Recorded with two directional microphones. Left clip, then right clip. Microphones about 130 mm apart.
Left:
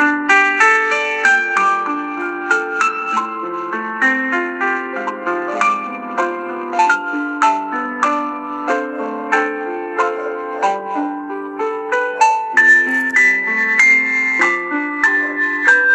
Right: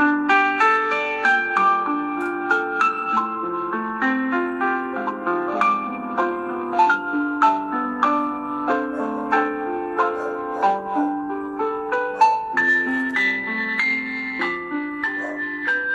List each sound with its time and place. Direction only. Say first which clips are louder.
0.0 s music: left 5 dB; 25° left (ahead or behind)
10.6 s music: left 2 dB; 25° left (ahead or behind)
13.6 s music: left 10 dB; 35° left (ahead or behind)